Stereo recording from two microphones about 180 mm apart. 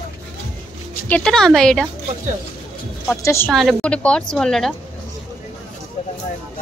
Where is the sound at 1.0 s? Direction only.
5° left (ahead or behind).